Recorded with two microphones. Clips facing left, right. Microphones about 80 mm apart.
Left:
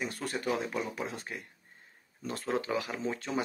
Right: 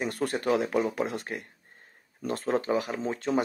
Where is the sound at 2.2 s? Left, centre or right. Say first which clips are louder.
Right 5 dB; right.